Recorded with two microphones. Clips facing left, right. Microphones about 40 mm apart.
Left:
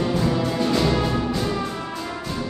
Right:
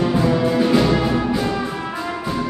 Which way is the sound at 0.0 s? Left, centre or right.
Centre.